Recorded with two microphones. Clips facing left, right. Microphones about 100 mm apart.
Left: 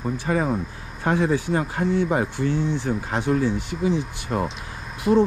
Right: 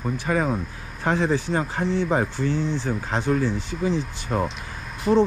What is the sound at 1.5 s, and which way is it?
Speech, 30° right (ahead or behind).